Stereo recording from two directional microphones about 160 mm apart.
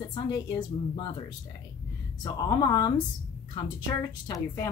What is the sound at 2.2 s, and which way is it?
Speech, 25° left (ahead or behind).